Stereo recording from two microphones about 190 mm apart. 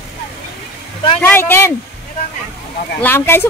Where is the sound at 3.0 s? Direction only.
10° left (ahead or behind).